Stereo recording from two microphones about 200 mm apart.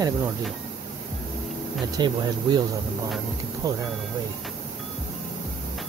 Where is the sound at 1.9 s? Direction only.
20° right (ahead or behind).